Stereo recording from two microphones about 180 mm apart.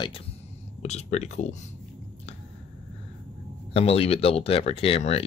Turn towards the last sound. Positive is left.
turn(degrees=35)  # may be behind; listen again after turning